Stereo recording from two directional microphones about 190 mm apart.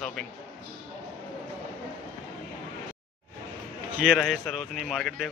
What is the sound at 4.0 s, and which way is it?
Speech, centre (ahead or behind).